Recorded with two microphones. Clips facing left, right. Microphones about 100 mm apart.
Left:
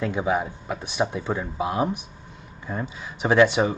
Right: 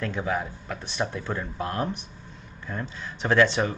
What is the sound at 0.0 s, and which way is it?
Speech, 15° left (ahead or behind).